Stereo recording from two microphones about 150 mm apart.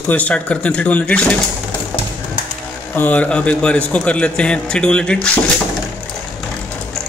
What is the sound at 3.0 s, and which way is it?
A man's voice, 10° left (ahead or behind).